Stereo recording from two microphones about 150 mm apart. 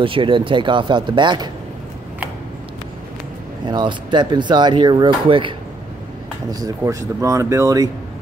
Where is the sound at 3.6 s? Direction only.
30° right (ahead or behind).